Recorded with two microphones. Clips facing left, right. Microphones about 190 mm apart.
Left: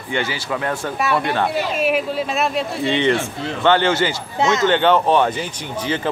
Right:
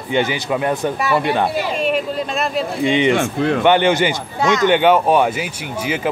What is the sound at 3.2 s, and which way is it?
Speech, 60° right (ahead or behind).